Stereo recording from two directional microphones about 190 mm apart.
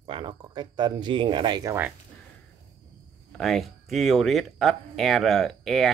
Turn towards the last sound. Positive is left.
turn(degrees=0)  # may be behind; listen again after turning